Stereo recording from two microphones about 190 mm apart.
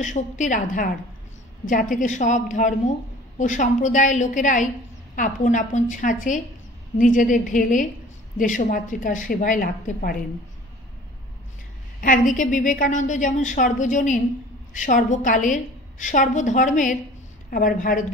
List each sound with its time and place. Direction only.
0.0 s a woman's voice: 40° left (ahead or behind)
12.0 s a woman's voice: 45° left (ahead or behind)